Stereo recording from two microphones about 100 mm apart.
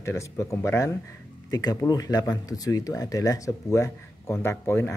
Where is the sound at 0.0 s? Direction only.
30° left (ahead or behind).